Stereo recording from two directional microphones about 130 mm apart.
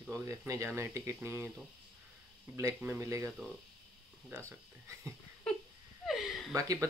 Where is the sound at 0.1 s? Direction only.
25° right (ahead or behind).